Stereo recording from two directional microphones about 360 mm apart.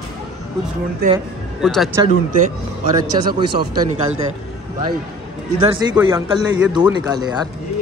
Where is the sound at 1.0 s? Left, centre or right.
Right.